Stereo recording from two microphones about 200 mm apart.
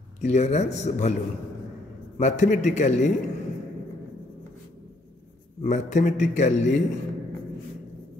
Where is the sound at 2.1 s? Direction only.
35° left (ahead or behind).